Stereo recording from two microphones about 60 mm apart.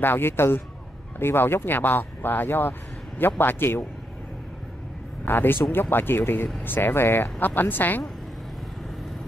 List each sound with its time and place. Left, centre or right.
0.0 s speech: left
5.2 s speech: left